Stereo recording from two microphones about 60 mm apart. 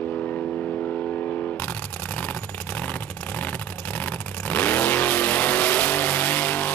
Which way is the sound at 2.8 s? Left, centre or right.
Left.